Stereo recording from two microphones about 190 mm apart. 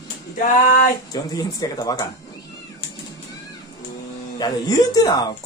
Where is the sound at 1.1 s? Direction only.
20° left (ahead or behind).